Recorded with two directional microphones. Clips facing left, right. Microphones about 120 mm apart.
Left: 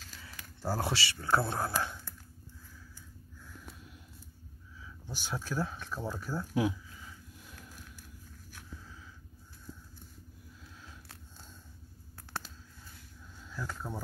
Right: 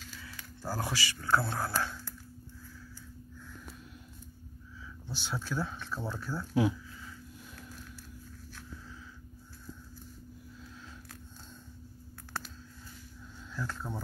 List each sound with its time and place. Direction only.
0.6 s speech: 25° left (ahead or behind)
5.0 s speech: 10° left (ahead or behind)
13.5 s speech: 10° left (ahead or behind)